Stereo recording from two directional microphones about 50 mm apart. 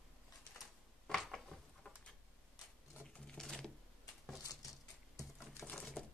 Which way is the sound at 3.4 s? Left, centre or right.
Centre.